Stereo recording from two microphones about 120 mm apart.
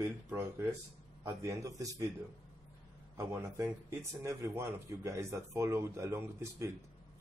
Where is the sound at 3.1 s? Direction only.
25° right (ahead or behind).